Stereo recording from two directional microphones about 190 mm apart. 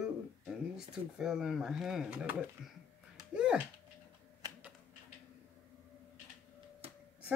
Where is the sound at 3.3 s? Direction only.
5° right (ahead or behind).